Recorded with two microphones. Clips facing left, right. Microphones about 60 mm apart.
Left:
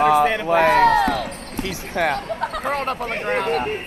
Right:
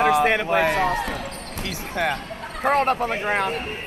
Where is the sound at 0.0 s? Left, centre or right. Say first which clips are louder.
Left 2 dB; right.